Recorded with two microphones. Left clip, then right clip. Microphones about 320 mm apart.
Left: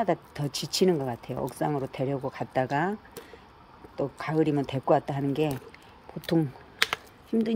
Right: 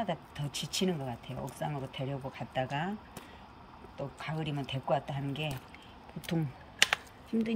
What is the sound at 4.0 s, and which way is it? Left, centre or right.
Speech, centre.